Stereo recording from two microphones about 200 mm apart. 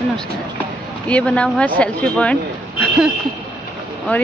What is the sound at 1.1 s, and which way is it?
Speech, 5° left (ahead or behind).